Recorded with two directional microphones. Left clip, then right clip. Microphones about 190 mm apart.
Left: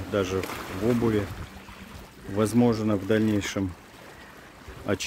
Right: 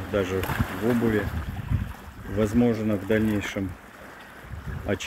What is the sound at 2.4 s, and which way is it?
Speech, 35° left (ahead or behind).